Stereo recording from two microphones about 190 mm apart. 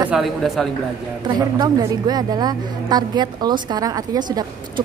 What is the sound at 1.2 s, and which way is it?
A woman's voice, 20° right (ahead or behind).